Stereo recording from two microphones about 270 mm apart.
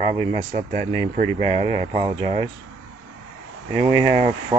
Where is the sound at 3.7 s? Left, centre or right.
Centre.